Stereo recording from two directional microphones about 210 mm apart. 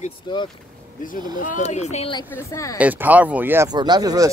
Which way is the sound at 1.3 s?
35° left (ahead or behind).